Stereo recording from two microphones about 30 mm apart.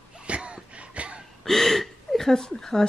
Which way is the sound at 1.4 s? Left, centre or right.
Centre.